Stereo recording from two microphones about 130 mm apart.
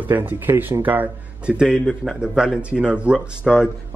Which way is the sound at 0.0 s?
15° right (ahead or behind).